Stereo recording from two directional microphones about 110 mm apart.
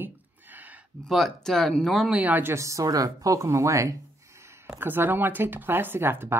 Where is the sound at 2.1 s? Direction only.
15° right (ahead or behind).